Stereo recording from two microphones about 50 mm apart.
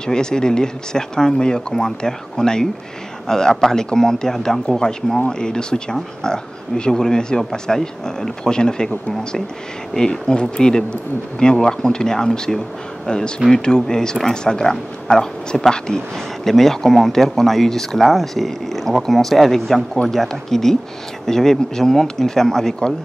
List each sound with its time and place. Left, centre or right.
0.0 s speech: centre